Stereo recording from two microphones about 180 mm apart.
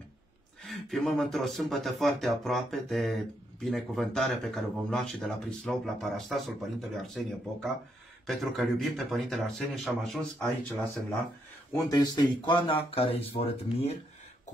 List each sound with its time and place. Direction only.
0.7 s speech: centre (ahead or behind)
11.8 s speech: 20° left (ahead or behind)